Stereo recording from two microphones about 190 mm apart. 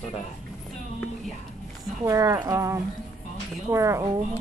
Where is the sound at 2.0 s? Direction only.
15° right (ahead or behind).